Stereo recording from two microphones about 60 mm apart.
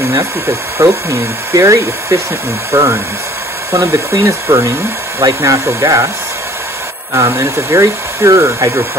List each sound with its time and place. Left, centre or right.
0.7 s speech: right
5.2 s speech: right
7.2 s speech: right